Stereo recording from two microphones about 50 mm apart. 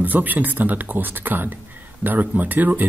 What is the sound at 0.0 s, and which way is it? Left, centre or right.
A man's voice, right.